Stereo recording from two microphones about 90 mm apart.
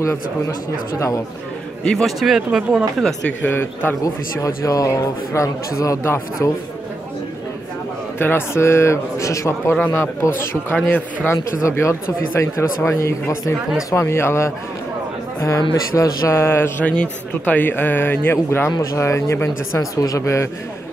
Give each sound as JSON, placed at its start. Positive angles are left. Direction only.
{"t": 0.9, "sound": "speech", "side_deg": 35}
{"t": 1.9, "sound": "speech", "side_deg": 0}
{"t": 3.3, "sound": "speech", "side_deg": 20}
{"t": 4.0, "sound": "speech", "side_deg": 35}
{"t": 8.2, "sound": "speech", "side_deg": 25}
{"t": 9.8, "sound": "speech", "side_deg": 20}
{"t": 15.7, "sound": "speech", "side_deg": 35}